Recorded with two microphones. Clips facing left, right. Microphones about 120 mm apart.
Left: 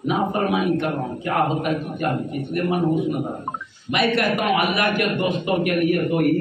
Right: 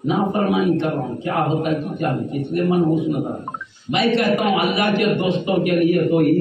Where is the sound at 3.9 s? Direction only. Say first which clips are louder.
Right 3 dB; 25° right (ahead or behind).